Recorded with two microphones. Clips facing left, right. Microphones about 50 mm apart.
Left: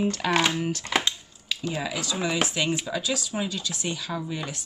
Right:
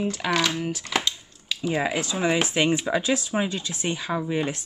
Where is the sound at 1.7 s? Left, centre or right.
Right.